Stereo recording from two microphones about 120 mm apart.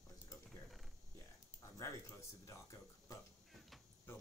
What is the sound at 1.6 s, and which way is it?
Speech, 25° left (ahead or behind).